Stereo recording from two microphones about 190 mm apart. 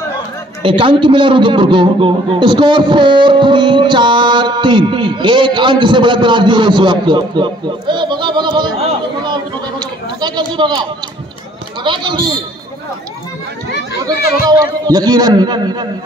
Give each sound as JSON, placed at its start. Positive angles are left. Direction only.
{"t": 0.6, "sound": "a man's voice", "side_deg": -30}
{"t": 9.2, "sound": "a sound", "side_deg": -25}
{"t": 11.8, "sound": "a man's voice", "side_deg": -25}
{"t": 14.0, "sound": "a man's voice", "side_deg": -20}